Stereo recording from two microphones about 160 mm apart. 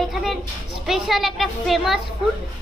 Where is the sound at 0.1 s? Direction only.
Centre (ahead or behind).